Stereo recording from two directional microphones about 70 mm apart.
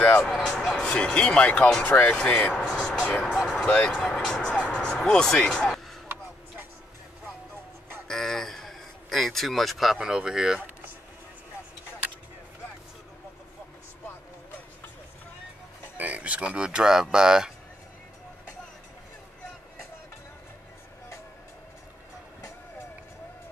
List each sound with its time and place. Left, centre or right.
0.2 s speech: centre
2.5 s music: centre
3.3 s vehicle: centre
3.6 s speech: left
4.1 s music: centre
4.8 s speech: centre
8.1 s a sound: centre
9.9 s speech: centre
16.0 s speech: centre